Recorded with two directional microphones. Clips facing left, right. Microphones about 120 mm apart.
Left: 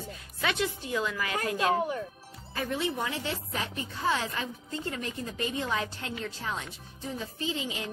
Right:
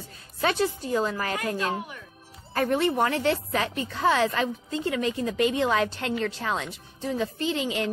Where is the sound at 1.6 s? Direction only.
35° left (ahead or behind).